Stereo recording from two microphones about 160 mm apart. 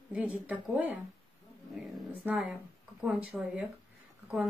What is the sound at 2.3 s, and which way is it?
Speech, 5° right (ahead or behind).